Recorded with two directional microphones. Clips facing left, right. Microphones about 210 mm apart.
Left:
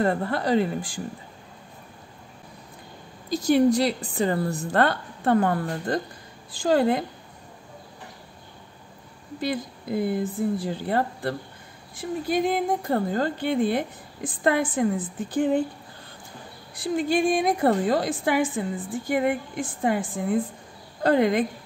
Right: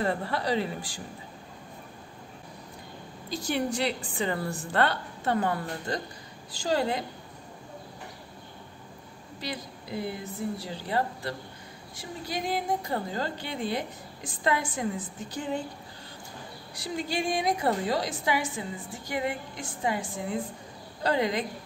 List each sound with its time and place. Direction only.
0.0 s a woman's voice: 50° left (ahead or behind)
3.3 s a woman's voice: 40° left (ahead or behind)
9.4 s a woman's voice: 50° left (ahead or behind)
16.7 s a woman's voice: 50° left (ahead or behind)